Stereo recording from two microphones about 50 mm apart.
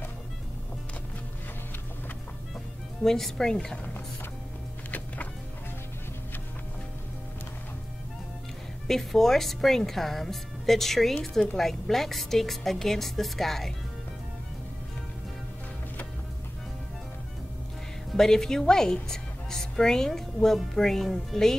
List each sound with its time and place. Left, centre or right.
3.0 s a woman's voice: centre
4.9 s music: left
8.8 s a woman's voice: centre
18.1 s a woman's voice: centre